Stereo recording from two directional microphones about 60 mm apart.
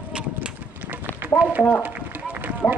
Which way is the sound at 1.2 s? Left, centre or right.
Right.